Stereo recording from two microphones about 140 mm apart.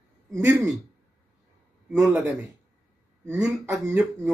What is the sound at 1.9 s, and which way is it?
Speech, 15° right (ahead or behind).